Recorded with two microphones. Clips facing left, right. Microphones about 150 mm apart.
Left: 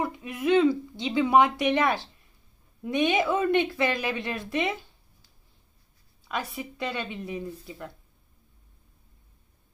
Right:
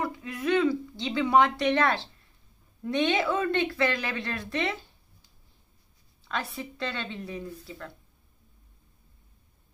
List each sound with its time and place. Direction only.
0.0 s speech: 20° left (ahead or behind)
6.2 s speech: 15° left (ahead or behind)